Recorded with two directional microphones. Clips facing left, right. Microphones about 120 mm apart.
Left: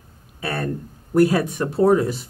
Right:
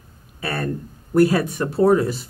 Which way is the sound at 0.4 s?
20° left (ahead or behind).